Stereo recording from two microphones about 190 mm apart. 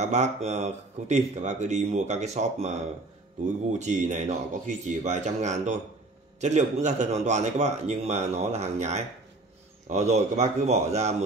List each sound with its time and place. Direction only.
0.0 s speech: 35° right (ahead or behind)